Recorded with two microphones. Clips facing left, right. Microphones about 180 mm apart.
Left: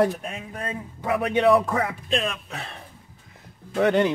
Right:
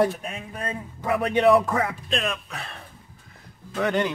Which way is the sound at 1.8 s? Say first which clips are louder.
Left 1 dB; 20° left (ahead or behind).